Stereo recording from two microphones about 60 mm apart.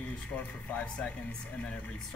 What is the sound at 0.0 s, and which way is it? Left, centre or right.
Speech, left.